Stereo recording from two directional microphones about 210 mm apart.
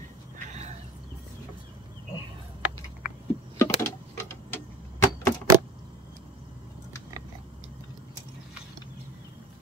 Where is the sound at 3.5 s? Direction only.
10° left (ahead or behind).